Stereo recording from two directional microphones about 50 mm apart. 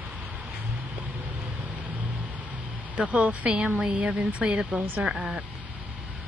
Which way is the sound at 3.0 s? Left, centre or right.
Right.